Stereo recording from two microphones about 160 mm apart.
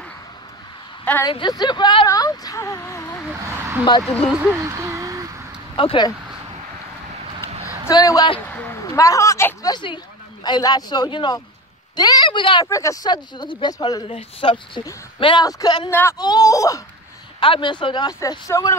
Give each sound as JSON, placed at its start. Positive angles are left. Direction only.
{"t": 1.2, "sound": "speech", "side_deg": 25}
{"t": 3.4, "sound": "speech", "side_deg": -15}
{"t": 4.3, "sound": "a sound", "side_deg": -10}
{"t": 5.8, "sound": "speech", "side_deg": 30}
{"t": 7.6, "sound": "a woman's voice", "side_deg": 20}
{"t": 8.5, "sound": "speech", "side_deg": 10}
{"t": 12.6, "sound": "speech", "side_deg": 20}
{"t": 14.0, "sound": "speech", "side_deg": 35}
{"t": 15.9, "sound": "a man's voice", "side_deg": 15}
{"t": 16.2, "sound": "speech", "side_deg": 25}
{"t": 17.4, "sound": "speech", "side_deg": 30}